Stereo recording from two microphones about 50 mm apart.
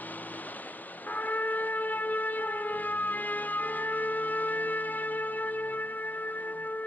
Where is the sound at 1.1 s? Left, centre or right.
Left.